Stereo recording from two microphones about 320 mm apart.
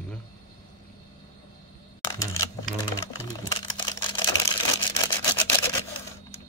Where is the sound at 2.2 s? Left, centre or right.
Centre.